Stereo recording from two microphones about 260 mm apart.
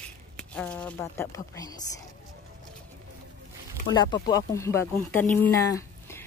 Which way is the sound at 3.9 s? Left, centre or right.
Centre.